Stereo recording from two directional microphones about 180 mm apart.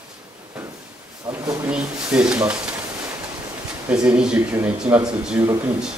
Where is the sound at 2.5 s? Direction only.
5° right (ahead or behind).